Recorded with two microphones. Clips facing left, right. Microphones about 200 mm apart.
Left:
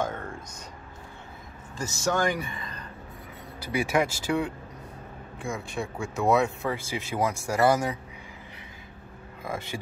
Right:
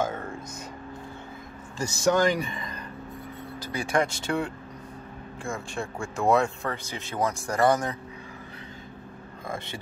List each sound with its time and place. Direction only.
0.0 s a sound: 5° right (ahead or behind)
1.8 s speech: 15° right (ahead or behind)
3.6 s speech: 10° left (ahead or behind)
9.4 s speech: 10° left (ahead or behind)